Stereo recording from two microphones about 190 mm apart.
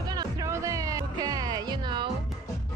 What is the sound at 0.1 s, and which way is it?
Music, 20° right (ahead or behind).